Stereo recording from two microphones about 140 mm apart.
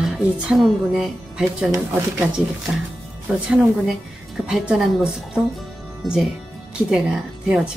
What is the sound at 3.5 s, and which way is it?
A woman's voice, 5° right (ahead or behind).